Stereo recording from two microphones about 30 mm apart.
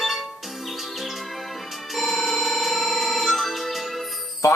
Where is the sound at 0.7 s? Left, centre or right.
Centre.